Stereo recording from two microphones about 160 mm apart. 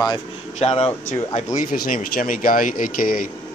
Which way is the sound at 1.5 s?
60° left (ahead or behind).